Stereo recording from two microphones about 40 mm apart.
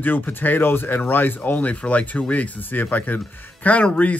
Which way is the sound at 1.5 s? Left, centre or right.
Left.